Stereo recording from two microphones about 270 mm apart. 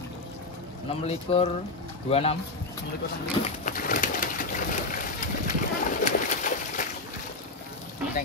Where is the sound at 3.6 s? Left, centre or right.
Left.